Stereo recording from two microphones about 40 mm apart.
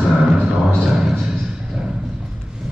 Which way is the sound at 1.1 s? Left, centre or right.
Centre.